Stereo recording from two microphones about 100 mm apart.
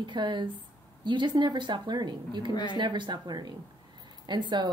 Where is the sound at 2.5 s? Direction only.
50° left (ahead or behind).